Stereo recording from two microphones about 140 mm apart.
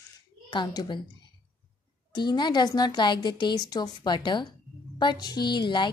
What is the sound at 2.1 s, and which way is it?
A woman's voice, 30° left (ahead or behind).